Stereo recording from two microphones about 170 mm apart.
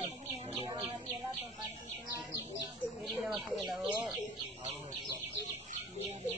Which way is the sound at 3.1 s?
Centre (ahead or behind).